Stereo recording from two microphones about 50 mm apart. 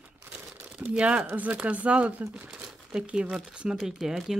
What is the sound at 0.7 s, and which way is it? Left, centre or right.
Speech, right.